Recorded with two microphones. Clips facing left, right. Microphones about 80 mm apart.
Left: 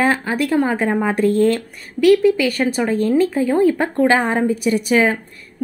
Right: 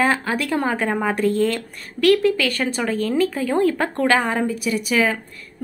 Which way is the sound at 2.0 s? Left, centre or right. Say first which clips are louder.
Left 4 dB; centre.